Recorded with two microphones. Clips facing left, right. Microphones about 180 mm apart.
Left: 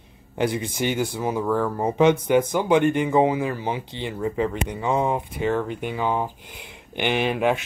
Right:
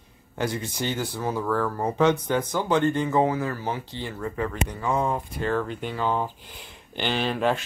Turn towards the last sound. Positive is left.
turn(degrees=15)  # may be behind; listen again after turning